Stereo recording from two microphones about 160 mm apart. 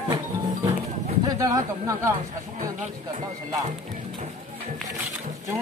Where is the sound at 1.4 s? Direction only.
20° right (ahead or behind).